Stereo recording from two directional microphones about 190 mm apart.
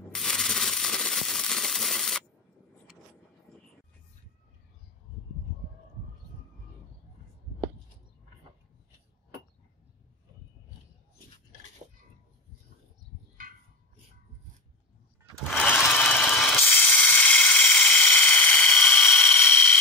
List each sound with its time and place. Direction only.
0.1 s sanding: centre (ahead or behind)
15.5 s mechanisms: 10° left (ahead or behind)
15.8 s ratchet: 5° left (ahead or behind)